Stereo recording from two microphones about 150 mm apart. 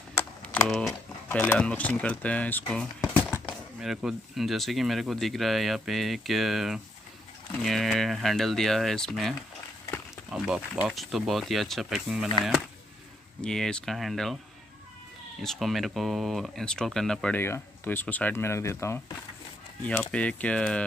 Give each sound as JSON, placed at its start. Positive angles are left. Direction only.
{"t": 0.2, "sound": "typing", "side_deg": 15}
{"t": 0.7, "sound": "speech", "side_deg": 5}
{"t": 10.3, "sound": "speech", "side_deg": -5}
{"t": 15.4, "sound": "speech", "side_deg": 0}
{"t": 19.8, "sound": "speech", "side_deg": 10}